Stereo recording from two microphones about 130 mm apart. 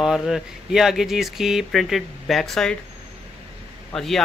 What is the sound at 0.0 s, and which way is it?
Speech, 5° right (ahead or behind).